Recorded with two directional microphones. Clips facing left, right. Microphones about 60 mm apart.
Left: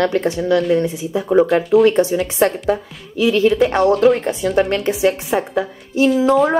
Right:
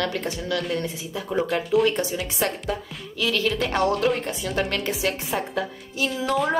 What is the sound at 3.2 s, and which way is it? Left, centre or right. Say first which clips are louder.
Speech: left 10 dB; left.